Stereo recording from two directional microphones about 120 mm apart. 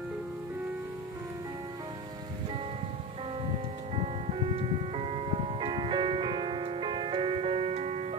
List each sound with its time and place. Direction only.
3.9 s music: 50° right (ahead or behind)